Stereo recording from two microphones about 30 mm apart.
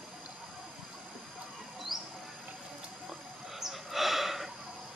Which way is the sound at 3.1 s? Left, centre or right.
Centre.